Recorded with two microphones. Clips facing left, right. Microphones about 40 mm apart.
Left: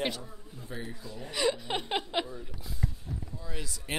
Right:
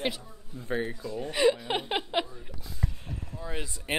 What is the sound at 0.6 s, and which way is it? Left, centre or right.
Speech, right.